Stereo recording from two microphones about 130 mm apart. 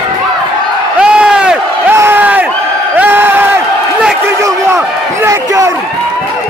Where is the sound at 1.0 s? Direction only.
5° right (ahead or behind).